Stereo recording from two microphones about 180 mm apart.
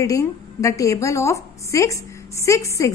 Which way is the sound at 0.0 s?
15° left (ahead or behind).